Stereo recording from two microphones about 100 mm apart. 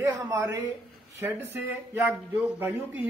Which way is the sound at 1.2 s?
20° right (ahead or behind).